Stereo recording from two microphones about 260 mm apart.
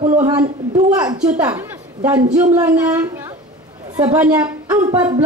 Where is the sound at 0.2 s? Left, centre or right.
Centre.